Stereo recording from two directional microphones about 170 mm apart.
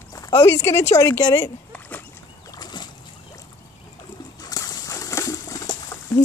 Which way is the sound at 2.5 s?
25° left (ahead or behind).